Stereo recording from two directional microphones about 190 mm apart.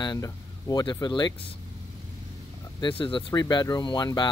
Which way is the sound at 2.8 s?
25° left (ahead or behind).